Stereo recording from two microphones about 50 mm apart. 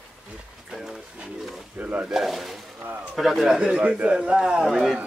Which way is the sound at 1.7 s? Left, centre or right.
Right.